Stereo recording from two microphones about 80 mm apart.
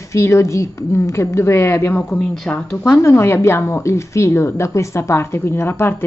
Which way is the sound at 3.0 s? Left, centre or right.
Left.